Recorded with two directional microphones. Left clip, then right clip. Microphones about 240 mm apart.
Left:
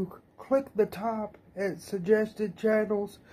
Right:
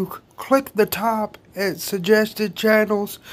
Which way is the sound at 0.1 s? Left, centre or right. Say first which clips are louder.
Right 9 dB; right.